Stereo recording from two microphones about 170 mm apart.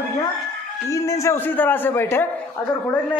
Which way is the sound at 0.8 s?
15° left (ahead or behind).